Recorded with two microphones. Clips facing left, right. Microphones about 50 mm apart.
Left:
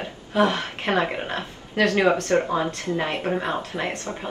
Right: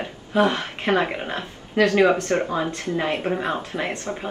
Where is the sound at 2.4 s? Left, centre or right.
Centre.